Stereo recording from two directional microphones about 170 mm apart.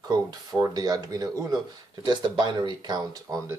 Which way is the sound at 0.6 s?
20° right (ahead or behind).